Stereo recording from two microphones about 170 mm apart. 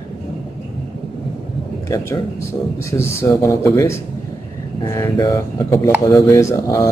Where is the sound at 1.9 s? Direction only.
15° left (ahead or behind).